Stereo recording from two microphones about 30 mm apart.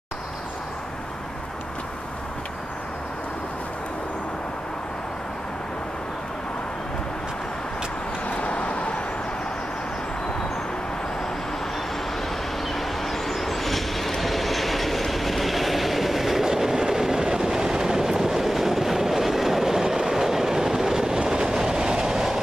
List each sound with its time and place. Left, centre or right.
8.3 s vehicle: left
12.7 s train: centre